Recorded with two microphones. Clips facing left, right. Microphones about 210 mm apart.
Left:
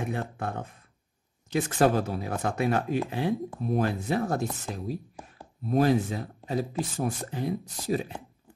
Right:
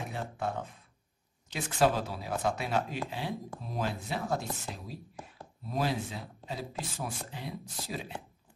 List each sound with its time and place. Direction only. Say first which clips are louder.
0.0 s speech: left 4 dB; 55° left (ahead or behind)